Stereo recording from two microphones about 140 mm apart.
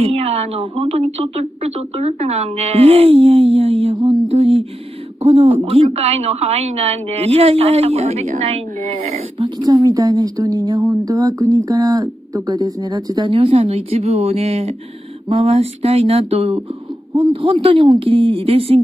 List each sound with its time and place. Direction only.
0.0 s a woman's voice: 45° right (ahead or behind)
9.6 s a woman's voice: 25° right (ahead or behind)
13.3 s a woman's voice: 40° right (ahead or behind)